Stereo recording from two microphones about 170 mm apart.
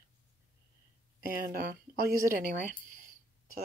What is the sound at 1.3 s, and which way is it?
Speech, 60° right (ahead or behind).